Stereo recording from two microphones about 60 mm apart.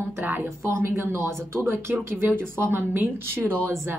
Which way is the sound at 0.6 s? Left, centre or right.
Right.